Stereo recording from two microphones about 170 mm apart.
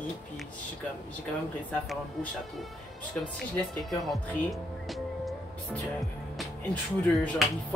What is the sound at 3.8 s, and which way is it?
Speech, centre (ahead or behind).